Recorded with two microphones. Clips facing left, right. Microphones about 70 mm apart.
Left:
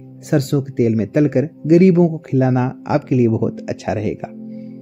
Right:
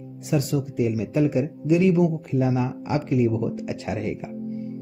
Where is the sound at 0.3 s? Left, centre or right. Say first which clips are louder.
Left 6 dB; left.